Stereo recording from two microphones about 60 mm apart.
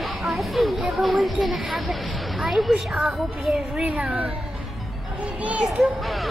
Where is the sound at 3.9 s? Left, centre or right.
Right.